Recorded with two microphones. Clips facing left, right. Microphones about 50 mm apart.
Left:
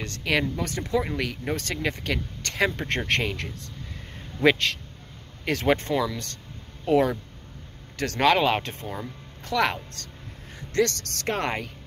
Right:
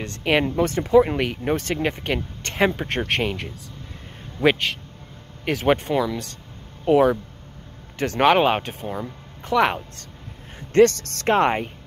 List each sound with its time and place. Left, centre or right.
0.0 s speech: right
2.7 s speech: centre
9.4 s speech: right
10.7 s speech: right